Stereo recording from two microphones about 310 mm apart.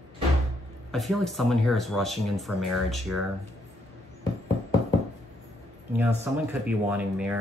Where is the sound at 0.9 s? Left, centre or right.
Centre.